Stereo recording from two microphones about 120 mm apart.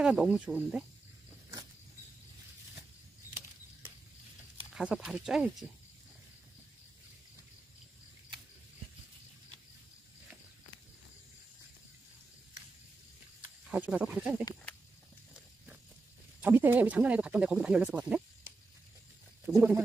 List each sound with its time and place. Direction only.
0.0 s speech: 5° right (ahead or behind)
4.7 s speech: 5° right (ahead or behind)
13.4 s snake: 15° right (ahead or behind)
16.3 s speech: 15° right (ahead or behind)
19.4 s speech: 15° right (ahead or behind)